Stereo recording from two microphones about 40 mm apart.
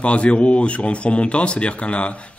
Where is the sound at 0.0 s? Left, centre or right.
Left.